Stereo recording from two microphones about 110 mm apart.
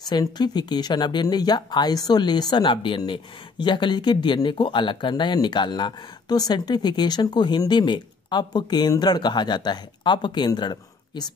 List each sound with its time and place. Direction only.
0.1 s speech: 40° left (ahead or behind)